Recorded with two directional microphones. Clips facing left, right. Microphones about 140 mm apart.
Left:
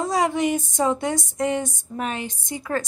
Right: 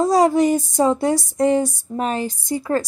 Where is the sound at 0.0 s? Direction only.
35° right (ahead or behind).